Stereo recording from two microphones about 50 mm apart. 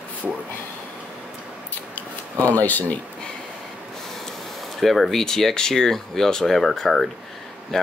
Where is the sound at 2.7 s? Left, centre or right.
Left.